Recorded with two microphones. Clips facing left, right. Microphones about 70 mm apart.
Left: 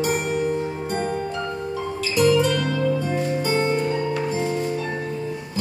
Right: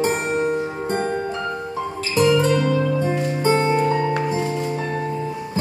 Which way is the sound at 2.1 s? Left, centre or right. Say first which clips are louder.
Right 2 dB; right.